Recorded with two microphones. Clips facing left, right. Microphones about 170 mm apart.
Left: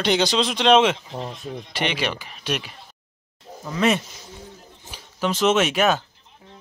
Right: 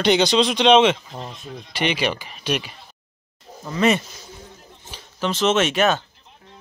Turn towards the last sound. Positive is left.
turn(degrees=5)  # may be behind; listen again after turning